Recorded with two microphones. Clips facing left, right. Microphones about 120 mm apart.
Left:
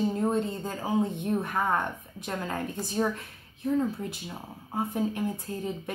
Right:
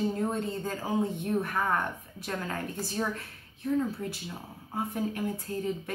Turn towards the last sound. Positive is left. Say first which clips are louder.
# left 1 dB
turn(degrees=25)  # may be behind; listen again after turning